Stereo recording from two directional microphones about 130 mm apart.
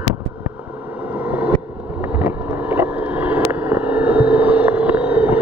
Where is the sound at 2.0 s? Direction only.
10° right (ahead or behind).